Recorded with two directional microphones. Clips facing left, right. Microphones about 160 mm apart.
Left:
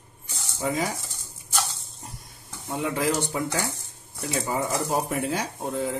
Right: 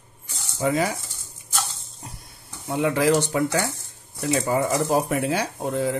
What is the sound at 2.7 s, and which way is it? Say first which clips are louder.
Speech: right 6 dB; 80° right.